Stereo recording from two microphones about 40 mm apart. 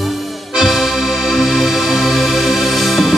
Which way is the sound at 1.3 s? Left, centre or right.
Centre.